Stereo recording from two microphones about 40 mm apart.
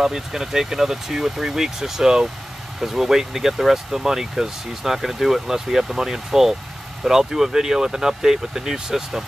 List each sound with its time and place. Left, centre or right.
0.0 s speech: centre